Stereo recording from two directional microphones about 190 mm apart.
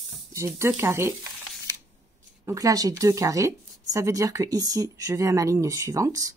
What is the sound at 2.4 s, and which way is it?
A woman's voice, 15° right (ahead or behind).